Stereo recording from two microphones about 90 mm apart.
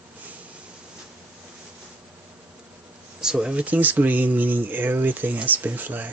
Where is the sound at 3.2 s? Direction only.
10° right (ahead or behind).